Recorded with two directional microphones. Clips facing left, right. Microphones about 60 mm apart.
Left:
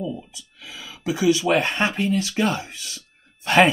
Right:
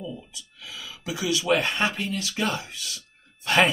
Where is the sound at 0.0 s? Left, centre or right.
Left.